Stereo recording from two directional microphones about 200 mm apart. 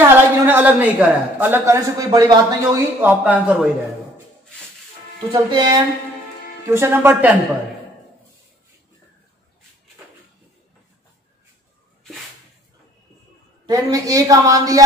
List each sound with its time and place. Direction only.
0.0 s a woman's voice: 10° right (ahead or behind)
5.3 s a woman's voice: 20° right (ahead or behind)
13.7 s a woman's voice: 15° right (ahead or behind)